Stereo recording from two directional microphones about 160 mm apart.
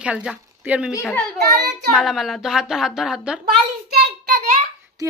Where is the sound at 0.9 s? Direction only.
10° left (ahead or behind).